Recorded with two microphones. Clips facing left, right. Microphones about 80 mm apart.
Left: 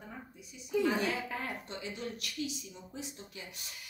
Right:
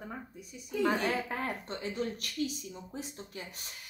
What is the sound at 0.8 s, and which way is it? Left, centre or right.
A woman's voice, right.